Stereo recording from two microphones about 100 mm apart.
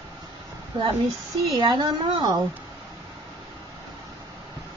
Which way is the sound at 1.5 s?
45° right (ahead or behind).